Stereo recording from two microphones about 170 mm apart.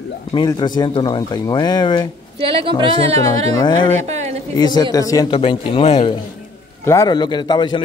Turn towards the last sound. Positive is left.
turn(degrees=25)  # may be behind; listen again after turning